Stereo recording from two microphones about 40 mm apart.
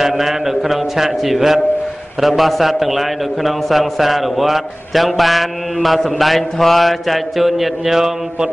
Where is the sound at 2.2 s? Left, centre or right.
Centre.